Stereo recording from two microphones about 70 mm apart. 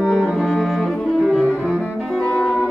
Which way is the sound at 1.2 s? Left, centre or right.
Centre.